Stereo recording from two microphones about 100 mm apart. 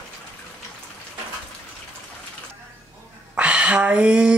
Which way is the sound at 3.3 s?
10° right (ahead or behind).